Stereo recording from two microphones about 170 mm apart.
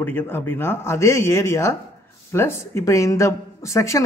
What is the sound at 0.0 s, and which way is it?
A woman's voice, 15° left (ahead or behind).